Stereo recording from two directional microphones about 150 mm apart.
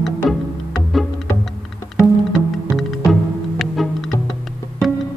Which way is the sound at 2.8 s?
Centre (ahead or behind).